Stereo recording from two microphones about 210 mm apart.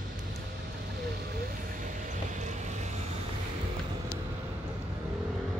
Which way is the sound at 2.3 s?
35° right (ahead or behind).